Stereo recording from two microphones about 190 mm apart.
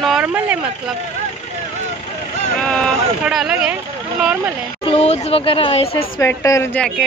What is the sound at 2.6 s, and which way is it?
Speech, 5° left (ahead or behind).